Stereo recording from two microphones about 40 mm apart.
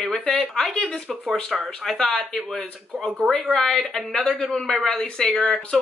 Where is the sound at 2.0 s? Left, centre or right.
Centre.